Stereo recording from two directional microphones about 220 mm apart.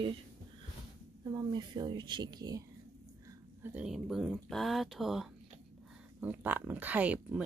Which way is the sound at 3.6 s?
5° right (ahead or behind).